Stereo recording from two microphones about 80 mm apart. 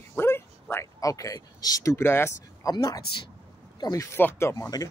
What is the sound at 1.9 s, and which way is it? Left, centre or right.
Speech, left.